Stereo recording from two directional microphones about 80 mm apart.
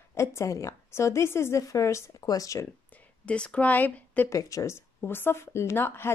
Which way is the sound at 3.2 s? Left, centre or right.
Centre.